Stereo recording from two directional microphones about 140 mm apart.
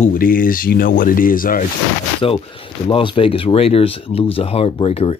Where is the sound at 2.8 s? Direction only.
40° left (ahead or behind).